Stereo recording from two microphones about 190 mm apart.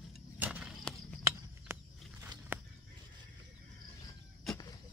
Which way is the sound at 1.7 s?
15° right (ahead or behind).